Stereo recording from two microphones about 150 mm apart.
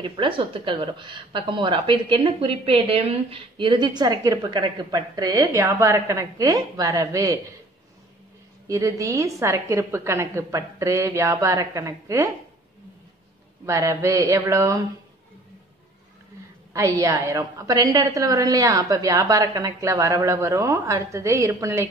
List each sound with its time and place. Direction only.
0.0 s a woman's voice: 35° right (ahead or behind)
8.6 s a woman's voice: 20° right (ahead or behind)
13.7 s a woman's voice: 20° right (ahead or behind)
16.7 s a woman's voice: 20° right (ahead or behind)